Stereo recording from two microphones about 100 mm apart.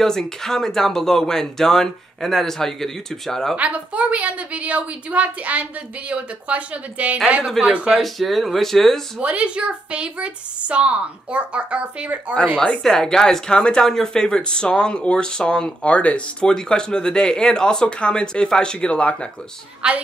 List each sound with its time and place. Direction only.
0.0 s speech: 5° left (ahead or behind)
3.5 s a woman's voice: 15° right (ahead or behind)
8.0 s speech: centre (ahead or behind)
9.2 s a woman's voice: 15° right (ahead or behind)
12.5 s speech: 5° left (ahead or behind)
19.8 s a woman's voice: 15° right (ahead or behind)